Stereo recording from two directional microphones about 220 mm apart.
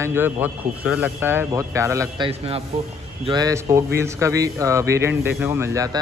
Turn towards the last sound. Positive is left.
turn(degrees=-15)  # may be behind; listen again after turning